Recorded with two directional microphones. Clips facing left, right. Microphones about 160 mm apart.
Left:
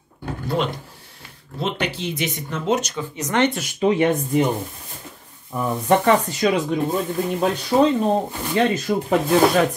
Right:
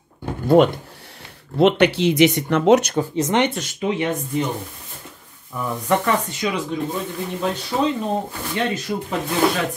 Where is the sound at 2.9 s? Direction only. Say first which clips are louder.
Right 4 dB; 30° right (ahead or behind).